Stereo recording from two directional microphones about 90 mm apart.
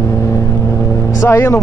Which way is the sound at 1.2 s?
25° left (ahead or behind).